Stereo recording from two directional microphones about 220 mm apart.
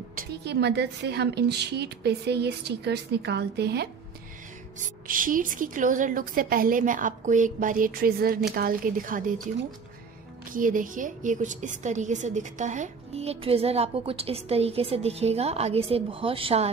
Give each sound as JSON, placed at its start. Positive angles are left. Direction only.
{"t": 0.1, "sound": "a woman's voice", "side_deg": -45}
{"t": 4.7, "sound": "a woman's voice", "side_deg": -35}
{"t": 10.5, "sound": "a woman's voice", "side_deg": -35}